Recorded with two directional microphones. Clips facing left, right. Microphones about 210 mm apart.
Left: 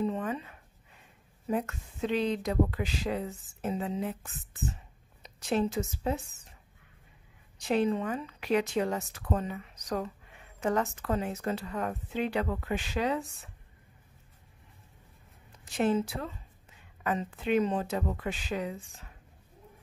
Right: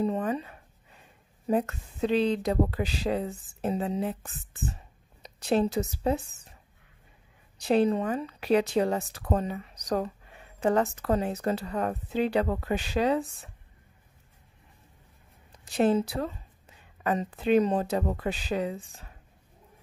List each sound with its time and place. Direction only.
0.0 s a sound: 35° right (ahead or behind)
1.5 s speech: 35° right (ahead or behind)
5.2 s a woman's voice: 35° right (ahead or behind)
7.5 s speech: 35° right (ahead or behind)
15.5 s speech: 35° right (ahead or behind)